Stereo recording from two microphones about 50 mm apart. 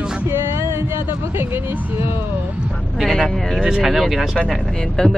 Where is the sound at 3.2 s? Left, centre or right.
Centre.